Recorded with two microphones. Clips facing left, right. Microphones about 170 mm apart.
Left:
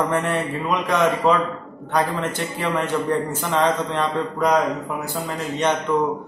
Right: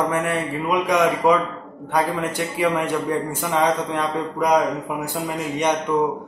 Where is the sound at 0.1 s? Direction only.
10° right (ahead or behind).